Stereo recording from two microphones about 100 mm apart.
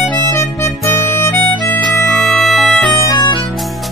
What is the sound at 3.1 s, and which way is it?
Music, 45° left (ahead or behind).